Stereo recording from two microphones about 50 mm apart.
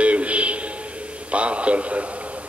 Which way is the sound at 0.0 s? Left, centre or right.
Right.